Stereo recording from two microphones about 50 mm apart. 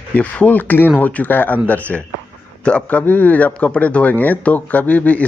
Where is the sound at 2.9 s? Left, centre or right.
Left.